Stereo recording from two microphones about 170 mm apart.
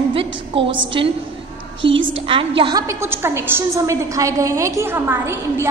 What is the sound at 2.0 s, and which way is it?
Speech, 30° right (ahead or behind).